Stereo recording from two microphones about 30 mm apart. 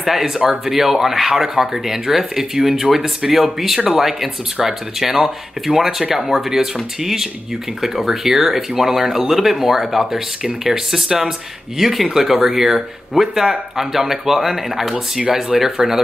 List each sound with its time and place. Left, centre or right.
0.0 s speech: centre
10.1 s speech: right
10.9 s speech: centre